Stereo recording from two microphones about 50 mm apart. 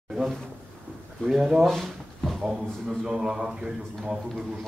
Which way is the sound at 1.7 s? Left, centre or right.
Centre.